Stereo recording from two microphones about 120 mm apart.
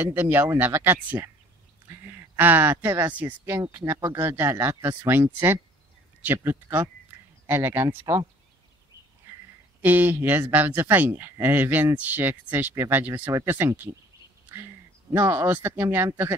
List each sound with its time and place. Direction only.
0.0 s speech: 15° right (ahead or behind)
9.8 s speech: 15° right (ahead or behind)
15.1 s speech: 20° right (ahead or behind)